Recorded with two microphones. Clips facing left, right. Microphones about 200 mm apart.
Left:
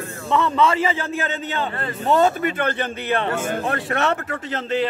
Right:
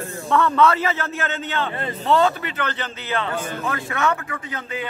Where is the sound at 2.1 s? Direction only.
50° left (ahead or behind).